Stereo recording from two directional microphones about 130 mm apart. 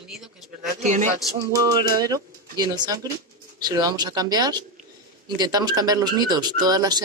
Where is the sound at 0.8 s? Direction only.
70° right (ahead or behind).